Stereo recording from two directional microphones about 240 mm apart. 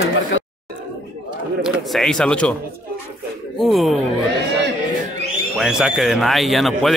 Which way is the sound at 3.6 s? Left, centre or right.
Centre.